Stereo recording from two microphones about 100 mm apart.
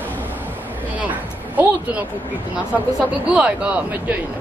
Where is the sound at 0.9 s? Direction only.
15° right (ahead or behind).